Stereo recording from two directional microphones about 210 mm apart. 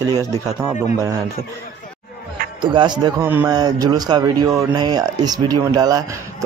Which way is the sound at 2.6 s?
20° right (ahead or behind).